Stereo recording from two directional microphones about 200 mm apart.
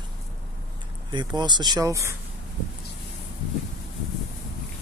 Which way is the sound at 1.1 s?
20° right (ahead or behind).